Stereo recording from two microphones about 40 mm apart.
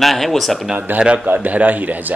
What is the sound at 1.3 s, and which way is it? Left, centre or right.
Speech, right.